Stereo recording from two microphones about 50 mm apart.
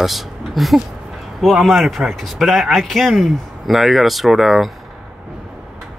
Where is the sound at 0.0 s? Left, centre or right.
Centre.